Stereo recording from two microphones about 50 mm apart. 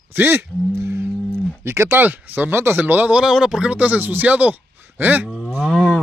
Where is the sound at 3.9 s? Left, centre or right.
Right.